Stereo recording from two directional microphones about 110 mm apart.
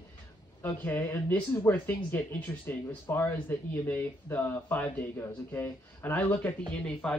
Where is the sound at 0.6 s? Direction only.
20° left (ahead or behind).